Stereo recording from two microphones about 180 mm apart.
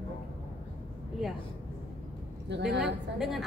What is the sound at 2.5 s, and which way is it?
Speech, 75° right (ahead or behind).